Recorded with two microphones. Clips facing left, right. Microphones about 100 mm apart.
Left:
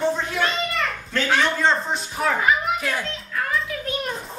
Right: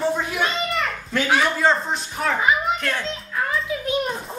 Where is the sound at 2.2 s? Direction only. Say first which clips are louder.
Even; 5° left (ahead or behind).